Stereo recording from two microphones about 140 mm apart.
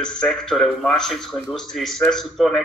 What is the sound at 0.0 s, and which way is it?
Speech, 5° left (ahead or behind).